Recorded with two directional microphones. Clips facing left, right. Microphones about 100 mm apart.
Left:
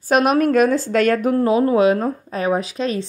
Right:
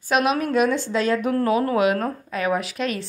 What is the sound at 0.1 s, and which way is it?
Speech, 50° left (ahead or behind).